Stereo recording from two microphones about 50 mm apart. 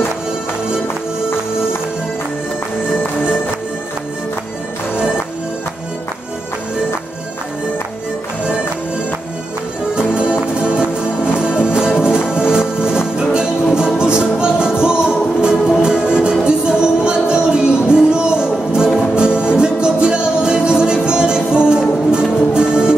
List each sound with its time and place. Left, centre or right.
9.9 s music: centre